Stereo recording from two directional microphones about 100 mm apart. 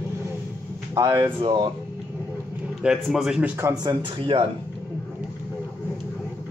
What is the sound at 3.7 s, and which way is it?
Speech, 45° right (ahead or behind).